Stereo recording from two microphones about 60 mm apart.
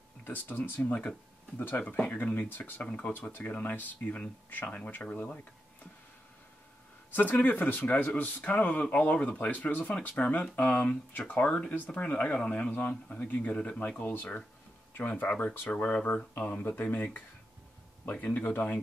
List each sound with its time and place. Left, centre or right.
0.2 s speech: left
1.6 s speech: left
2.8 s speech: centre
3.1 s speech: left
7.2 s speech: left
11.4 s speech: centre
11.9 s speech: left
12.6 s speech: left
18.4 s speech: left